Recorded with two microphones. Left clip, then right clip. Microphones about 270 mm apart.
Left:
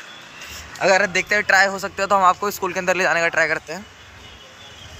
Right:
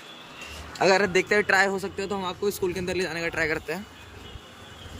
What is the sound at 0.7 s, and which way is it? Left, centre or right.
A man's voice, centre.